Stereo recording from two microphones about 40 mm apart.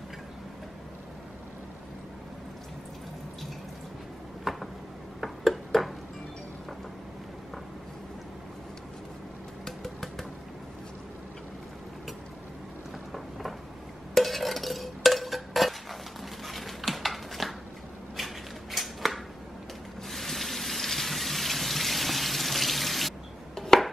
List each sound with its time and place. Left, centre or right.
4.5 s a sound: centre
9.7 s vehicle: centre
13.1 s vehicle: centre
14.1 s dishes: centre
16.4 s a sound: centre
18.1 s scissors: centre
20.1 s water: centre
23.6 s chopping: centre